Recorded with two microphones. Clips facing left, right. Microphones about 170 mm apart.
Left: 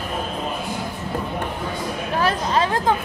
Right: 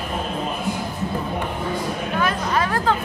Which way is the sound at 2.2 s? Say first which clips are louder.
Left 2 dB; 30° left (ahead or behind).